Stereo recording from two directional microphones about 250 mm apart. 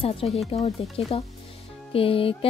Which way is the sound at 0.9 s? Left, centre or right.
Left.